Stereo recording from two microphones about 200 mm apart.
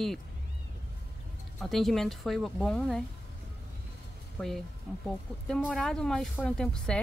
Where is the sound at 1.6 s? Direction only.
Centre (ahead or behind).